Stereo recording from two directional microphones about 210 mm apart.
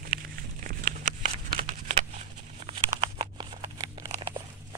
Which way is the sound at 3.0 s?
20° right (ahead or behind).